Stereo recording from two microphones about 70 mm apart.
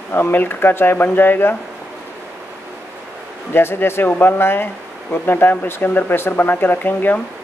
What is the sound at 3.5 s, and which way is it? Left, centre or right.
Speech, left.